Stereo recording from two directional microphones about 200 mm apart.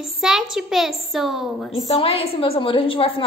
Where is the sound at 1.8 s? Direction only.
30° left (ahead or behind).